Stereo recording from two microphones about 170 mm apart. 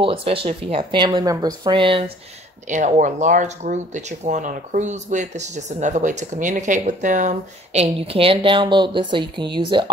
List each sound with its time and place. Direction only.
0.0 s speech: 30° right (ahead or behind)
2.7 s speech: 45° right (ahead or behind); by 9.8 s 30° right (ahead or behind)